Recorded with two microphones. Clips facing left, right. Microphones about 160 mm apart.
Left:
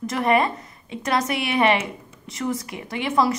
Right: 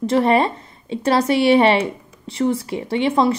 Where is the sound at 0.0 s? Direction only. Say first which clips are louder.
Right 4 dB; 30° right (ahead or behind).